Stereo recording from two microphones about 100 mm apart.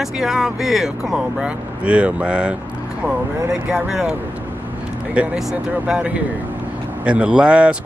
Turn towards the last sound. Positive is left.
turn(degrees=-10)  # may be behind; listen again after turning